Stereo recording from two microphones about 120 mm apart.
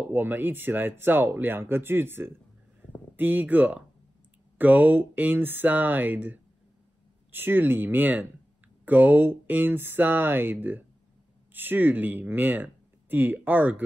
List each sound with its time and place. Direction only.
0.1 s speech: 15° right (ahead or behind)